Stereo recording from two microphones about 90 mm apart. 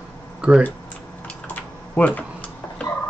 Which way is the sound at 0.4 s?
10° right (ahead or behind).